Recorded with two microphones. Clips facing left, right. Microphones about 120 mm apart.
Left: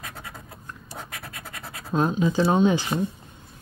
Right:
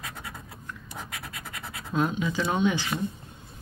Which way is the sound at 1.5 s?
30° left (ahead or behind).